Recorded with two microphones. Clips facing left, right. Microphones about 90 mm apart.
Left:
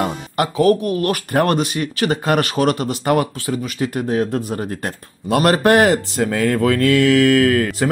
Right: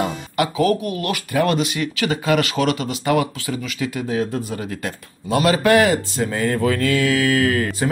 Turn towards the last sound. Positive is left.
turn(degrees=55)  # may be behind; listen again after turning